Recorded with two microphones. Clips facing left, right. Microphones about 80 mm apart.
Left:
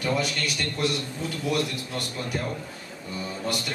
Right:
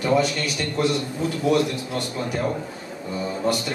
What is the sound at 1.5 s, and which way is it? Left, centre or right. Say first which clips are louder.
A man's voice: right 6 dB; centre.